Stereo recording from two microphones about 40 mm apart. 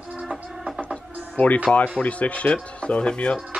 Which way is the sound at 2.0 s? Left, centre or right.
Left.